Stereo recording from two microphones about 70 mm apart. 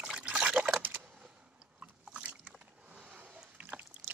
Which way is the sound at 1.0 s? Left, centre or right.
Centre.